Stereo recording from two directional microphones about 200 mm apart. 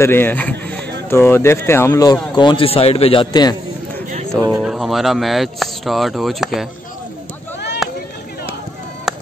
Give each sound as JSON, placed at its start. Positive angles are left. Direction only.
{"t": 0.0, "sound": "a man's voice", "side_deg": 10}
{"t": 4.5, "sound": "speech", "side_deg": -5}
{"t": 7.8, "sound": "a sound", "side_deg": 0}
{"t": 9.1, "sound": "chop", "side_deg": 0}